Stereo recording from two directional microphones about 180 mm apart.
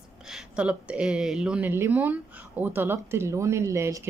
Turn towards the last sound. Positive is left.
turn(degrees=-15)  # may be behind; listen again after turning